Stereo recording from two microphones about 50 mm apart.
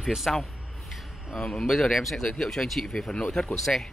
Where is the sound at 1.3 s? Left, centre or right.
Centre.